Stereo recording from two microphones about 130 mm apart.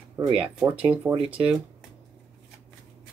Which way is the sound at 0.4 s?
15° right (ahead or behind).